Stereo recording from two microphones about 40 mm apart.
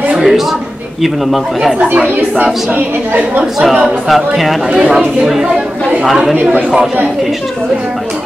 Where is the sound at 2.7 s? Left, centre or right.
Right.